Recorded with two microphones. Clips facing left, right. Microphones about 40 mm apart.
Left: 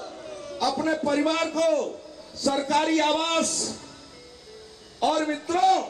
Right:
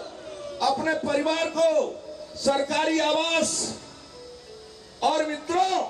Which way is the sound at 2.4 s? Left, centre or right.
Right.